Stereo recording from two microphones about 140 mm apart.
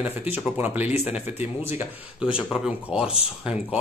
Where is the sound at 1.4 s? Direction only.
15° right (ahead or behind).